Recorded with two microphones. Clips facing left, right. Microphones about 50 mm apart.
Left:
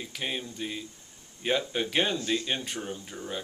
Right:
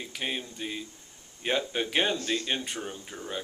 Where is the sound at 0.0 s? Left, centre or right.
Centre.